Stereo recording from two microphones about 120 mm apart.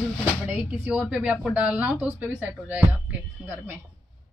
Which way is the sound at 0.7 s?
20° right (ahead or behind).